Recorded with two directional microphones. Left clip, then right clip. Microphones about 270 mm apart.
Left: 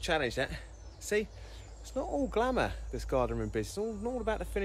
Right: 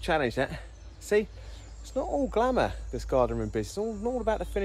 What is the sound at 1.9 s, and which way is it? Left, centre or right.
Speech, centre.